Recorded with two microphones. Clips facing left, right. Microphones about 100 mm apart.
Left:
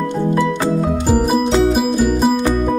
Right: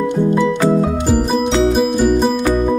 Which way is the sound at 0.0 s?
15° right (ahead or behind).